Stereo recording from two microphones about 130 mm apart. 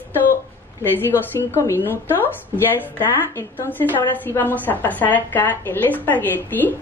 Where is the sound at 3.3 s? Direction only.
15° left (ahead or behind).